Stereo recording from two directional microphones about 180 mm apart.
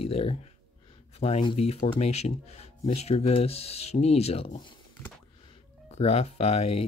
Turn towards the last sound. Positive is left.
turn(degrees=35)  # may be behind; listen again after turning